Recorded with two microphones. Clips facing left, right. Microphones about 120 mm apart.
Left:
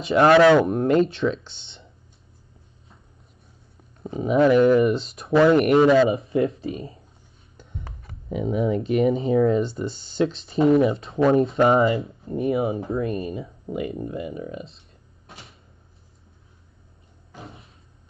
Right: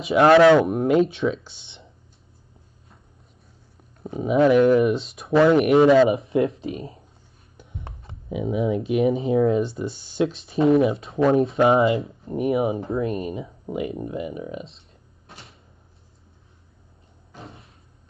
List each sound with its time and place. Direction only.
0.0 s speech: 5° right (ahead or behind)
4.0 s speech: centre (ahead or behind)
6.1 s speech: 25° right (ahead or behind)
7.5 s rub: 5° right (ahead or behind)
7.8 s a sound: 25° right (ahead or behind)
8.3 s speech: 5° right (ahead or behind); by 14.8 s 20° right (ahead or behind)
17.5 s a sound: centre (ahead or behind)